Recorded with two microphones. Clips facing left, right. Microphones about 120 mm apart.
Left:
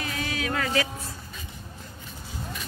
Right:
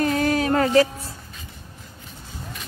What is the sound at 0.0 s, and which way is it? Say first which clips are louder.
Music: right 11 dB; 45° right (ahead or behind).